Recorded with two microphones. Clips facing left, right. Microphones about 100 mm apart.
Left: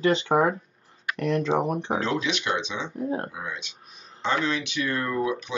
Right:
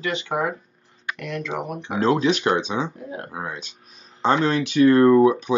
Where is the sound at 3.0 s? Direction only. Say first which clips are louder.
Left 5 dB; 35° left (ahead or behind).